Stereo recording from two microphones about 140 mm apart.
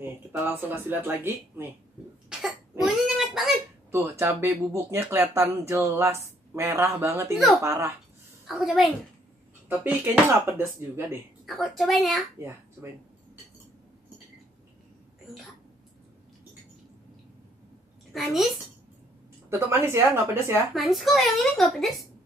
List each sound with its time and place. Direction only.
0.0 s speech: 15° right (ahead or behind)
2.8 s oink: centre (ahead or behind)
3.9 s speech: 20° right (ahead or behind)
8.5 s speech: centre (ahead or behind)
9.7 s speech: 10° right (ahead or behind)
11.4 s speech: centre (ahead or behind)
18.1 s speech: centre (ahead or behind)
19.7 s speech: 20° right (ahead or behind)
20.7 s speech: centre (ahead or behind)